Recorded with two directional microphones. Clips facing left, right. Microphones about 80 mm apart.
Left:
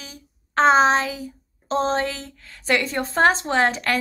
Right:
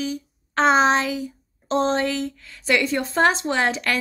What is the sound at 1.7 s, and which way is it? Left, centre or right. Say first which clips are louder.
A woman's voice: right 1 dB; left.